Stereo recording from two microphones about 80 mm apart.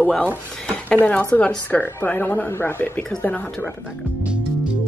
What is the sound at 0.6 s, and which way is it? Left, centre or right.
Speech, centre.